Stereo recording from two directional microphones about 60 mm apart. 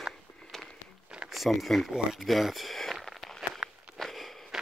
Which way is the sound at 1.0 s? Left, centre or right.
Centre.